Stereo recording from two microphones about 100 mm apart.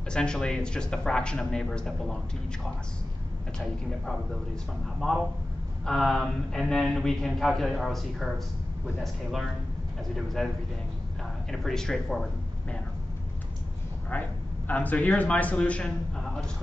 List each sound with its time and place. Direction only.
0.1 s speech: 10° left (ahead or behind)
3.5 s speech: 5° left (ahead or behind)
11.5 s speech: 5° left (ahead or behind)
14.1 s speech: 15° left (ahead or behind)